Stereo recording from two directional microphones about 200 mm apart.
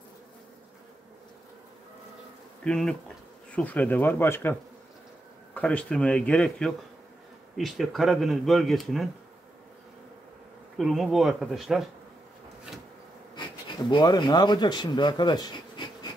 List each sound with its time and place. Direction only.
2.6 s speech: 5° left (ahead or behind)
10.8 s speech: centre (ahead or behind)
13.4 s speech: 25° left (ahead or behind)